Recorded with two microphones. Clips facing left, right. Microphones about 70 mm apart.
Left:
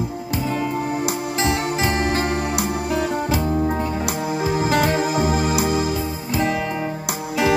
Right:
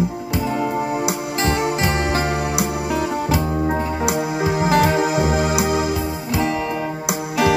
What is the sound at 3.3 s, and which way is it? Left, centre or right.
Music, right.